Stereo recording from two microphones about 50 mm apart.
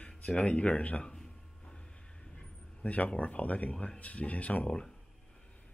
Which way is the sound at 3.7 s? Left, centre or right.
Centre.